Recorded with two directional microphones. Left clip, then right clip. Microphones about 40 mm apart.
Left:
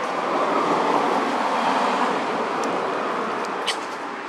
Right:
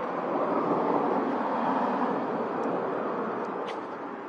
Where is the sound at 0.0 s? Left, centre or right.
Left.